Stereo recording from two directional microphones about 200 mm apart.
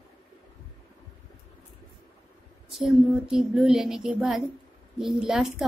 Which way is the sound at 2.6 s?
Centre (ahead or behind).